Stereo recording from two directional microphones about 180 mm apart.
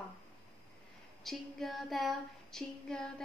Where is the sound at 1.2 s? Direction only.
Centre (ahead or behind).